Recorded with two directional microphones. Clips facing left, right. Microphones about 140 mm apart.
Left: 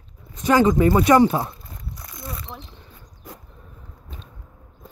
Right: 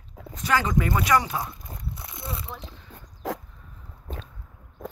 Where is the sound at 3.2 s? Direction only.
90° right.